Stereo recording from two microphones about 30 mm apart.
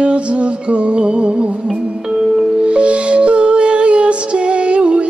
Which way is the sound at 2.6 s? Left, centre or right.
Right.